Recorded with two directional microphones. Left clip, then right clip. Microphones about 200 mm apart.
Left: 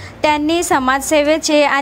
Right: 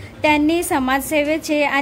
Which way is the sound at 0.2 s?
5° left (ahead or behind).